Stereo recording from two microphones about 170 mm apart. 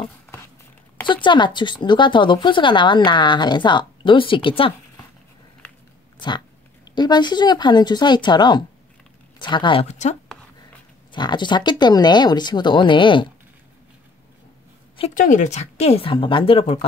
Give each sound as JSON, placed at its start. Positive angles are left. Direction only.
{"t": 1.0, "sound": "speech", "side_deg": 30}
{"t": 6.1, "sound": "speech", "side_deg": 25}
{"t": 11.1, "sound": "speech", "side_deg": 25}
{"t": 15.1, "sound": "speech", "side_deg": 45}